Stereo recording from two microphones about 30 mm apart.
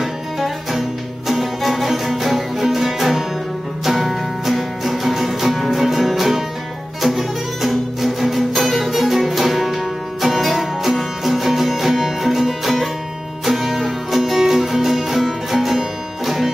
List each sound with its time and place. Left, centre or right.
0.0 s music: centre